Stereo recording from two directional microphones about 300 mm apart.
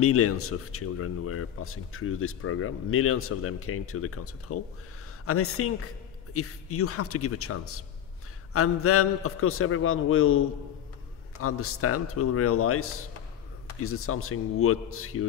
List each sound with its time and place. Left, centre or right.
0.0 s speech: left